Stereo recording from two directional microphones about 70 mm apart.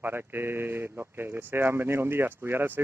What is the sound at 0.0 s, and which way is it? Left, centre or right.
Speech, right.